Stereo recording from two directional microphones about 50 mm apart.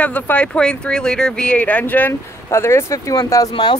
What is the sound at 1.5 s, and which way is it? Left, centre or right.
Speech, left.